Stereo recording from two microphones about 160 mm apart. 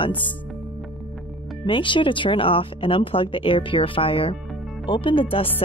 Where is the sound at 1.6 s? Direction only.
30° left (ahead or behind).